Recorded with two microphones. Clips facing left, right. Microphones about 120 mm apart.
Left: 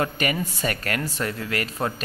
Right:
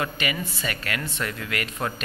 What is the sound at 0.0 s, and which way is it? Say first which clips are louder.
Speech: left 3 dB; 40° left (ahead or behind).